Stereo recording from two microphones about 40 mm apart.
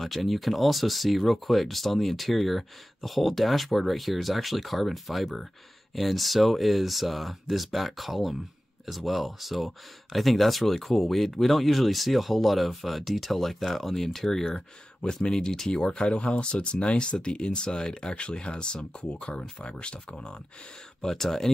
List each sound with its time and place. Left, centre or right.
0.0 s speech: centre; by 20.3 s left
21.0 s speech: centre